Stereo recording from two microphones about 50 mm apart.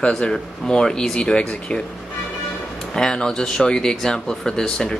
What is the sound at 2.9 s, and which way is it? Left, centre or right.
Speech, centre.